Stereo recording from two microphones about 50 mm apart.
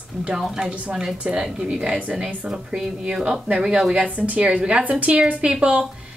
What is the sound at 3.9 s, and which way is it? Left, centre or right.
Speech, right.